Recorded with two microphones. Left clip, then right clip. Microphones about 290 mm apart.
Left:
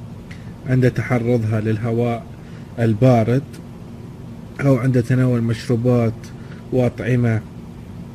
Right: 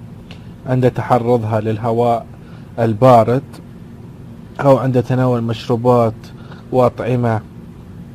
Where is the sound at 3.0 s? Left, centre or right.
Right.